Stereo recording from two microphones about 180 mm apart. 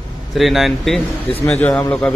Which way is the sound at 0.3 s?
Centre (ahead or behind).